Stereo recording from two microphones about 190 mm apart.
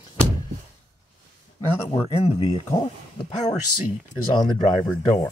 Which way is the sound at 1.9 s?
30° left (ahead or behind).